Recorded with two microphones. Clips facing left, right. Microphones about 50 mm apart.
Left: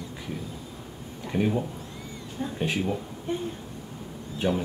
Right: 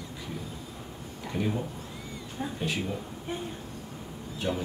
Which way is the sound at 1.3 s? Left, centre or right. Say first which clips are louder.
Left 5 dB; left.